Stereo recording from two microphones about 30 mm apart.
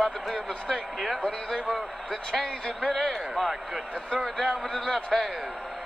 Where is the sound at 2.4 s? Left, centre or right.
Left.